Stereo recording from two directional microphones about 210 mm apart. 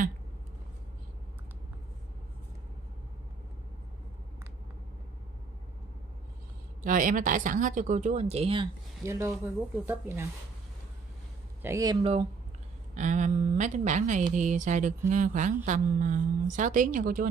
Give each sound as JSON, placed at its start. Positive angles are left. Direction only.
{"t": 6.8, "sound": "a woman's voice", "side_deg": -40}
{"t": 9.0, "sound": "speech", "side_deg": -15}
{"t": 11.6, "sound": "a woman's voice", "side_deg": -15}